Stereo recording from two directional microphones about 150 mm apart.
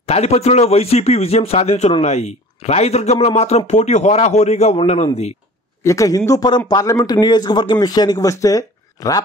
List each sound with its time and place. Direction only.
0.0 s speech: 45° left (ahead or behind)
5.9 s a man's voice: 20° left (ahead or behind)